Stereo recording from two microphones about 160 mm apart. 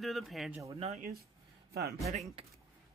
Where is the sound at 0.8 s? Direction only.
45° right (ahead or behind).